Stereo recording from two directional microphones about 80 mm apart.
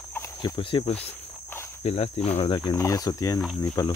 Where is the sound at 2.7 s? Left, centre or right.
Left.